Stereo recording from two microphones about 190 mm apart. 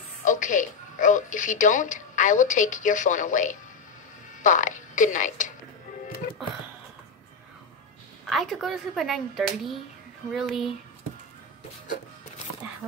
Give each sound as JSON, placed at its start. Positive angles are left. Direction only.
{"t": 0.2, "sound": "music", "side_deg": 40}
{"t": 4.4, "sound": "speech", "side_deg": 45}
{"t": 8.3, "sound": "speech", "side_deg": 0}